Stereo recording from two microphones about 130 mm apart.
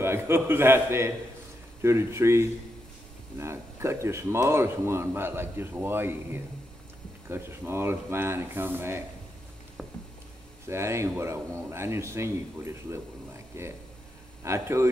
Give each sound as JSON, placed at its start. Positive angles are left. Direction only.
{"t": 0.0, "sound": "speech", "side_deg": -20}
{"t": 9.8, "sound": "a sound", "side_deg": -5}
{"t": 10.7, "sound": "speech", "side_deg": -20}